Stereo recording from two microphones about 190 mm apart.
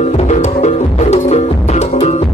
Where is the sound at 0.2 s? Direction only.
35° left (ahead or behind).